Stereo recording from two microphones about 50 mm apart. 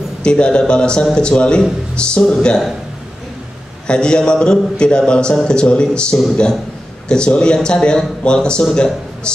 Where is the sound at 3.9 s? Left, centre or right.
Centre.